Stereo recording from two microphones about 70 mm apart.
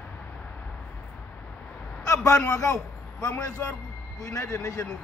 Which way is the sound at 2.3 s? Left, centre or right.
Left.